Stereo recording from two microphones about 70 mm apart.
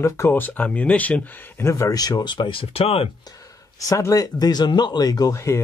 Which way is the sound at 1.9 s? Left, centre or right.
Left.